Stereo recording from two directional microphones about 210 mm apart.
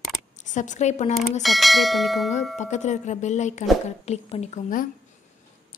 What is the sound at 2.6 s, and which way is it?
A woman's voice, 35° left (ahead or behind).